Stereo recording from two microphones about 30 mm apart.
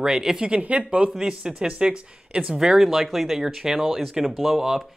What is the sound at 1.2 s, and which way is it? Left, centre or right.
Speech, right.